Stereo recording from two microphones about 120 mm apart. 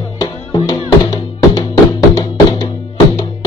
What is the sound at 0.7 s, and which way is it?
Music, 35° left (ahead or behind).